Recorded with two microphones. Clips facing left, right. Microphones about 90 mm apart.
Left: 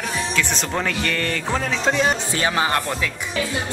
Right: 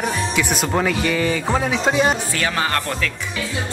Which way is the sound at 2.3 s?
20° left (ahead or behind).